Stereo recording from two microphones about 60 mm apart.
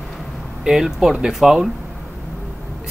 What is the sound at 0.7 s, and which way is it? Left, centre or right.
Speech, centre.